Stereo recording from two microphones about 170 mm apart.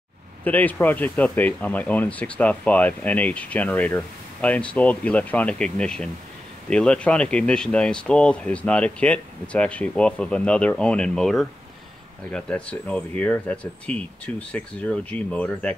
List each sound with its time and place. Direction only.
0.4 s speech: 10° left (ahead or behind)